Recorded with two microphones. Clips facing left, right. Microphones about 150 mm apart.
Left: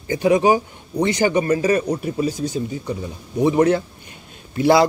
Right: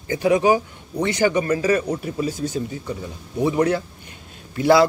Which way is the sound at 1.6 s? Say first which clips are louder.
Left 1 dB; 35° left (ahead or behind).